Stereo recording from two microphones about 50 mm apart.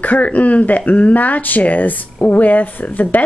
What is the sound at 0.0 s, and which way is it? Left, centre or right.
Speech, left.